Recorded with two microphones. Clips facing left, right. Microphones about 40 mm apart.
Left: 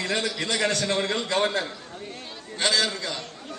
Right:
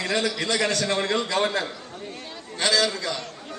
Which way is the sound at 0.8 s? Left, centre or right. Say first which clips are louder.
Right 1 dB; right.